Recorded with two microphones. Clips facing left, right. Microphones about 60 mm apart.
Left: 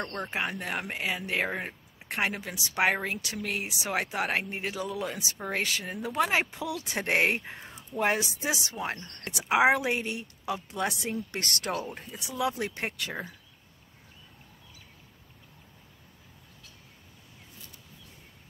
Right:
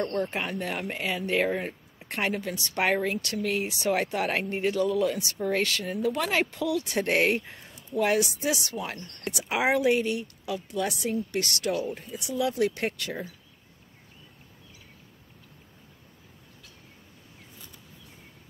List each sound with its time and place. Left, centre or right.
0.0 s speech: centre; by 12.0 s left
12.4 s speech: left
12.8 s speech: centre